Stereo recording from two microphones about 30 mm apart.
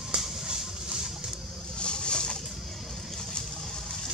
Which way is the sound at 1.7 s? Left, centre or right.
Left.